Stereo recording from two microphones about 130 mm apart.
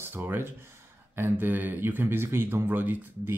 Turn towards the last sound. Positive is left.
turn(degrees=-15)  # may be behind; listen again after turning